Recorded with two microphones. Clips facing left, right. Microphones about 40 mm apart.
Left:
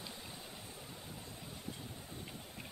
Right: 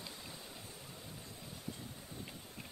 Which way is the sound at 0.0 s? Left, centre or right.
Centre.